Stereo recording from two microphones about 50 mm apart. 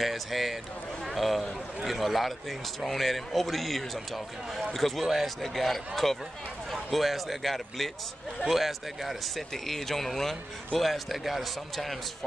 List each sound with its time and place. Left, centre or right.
0.0 s speech: centre